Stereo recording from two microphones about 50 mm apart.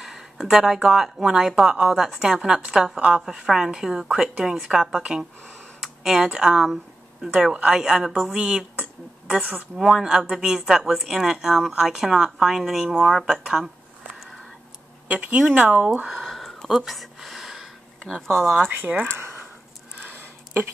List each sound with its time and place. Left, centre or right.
0.0 s speech: centre
5.8 s a sound: centre
6.2 s speech: centre
9.8 s speech: centre
15.0 s speech: right
16.2 s a sound: centre
18.0 s speech: centre
18.9 s speech: centre
20.1 s a sound: right